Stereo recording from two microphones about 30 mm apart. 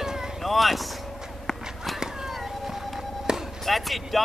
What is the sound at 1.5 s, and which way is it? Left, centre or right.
Run, centre.